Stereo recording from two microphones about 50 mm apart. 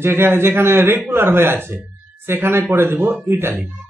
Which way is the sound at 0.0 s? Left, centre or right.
Right.